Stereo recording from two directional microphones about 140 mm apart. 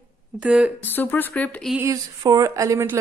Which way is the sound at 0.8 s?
15° left (ahead or behind).